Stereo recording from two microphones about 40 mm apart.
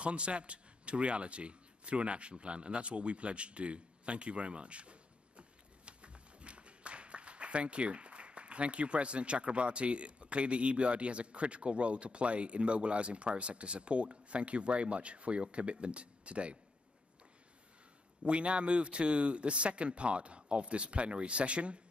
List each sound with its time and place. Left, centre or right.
0.0 s a man's voice: right
18.2 s a man's voice: right